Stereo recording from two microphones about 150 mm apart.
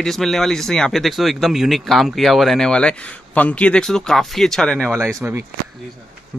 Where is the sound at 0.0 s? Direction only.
Centre (ahead or behind).